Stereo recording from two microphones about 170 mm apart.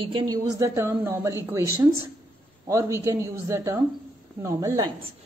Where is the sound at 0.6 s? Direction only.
15° right (ahead or behind).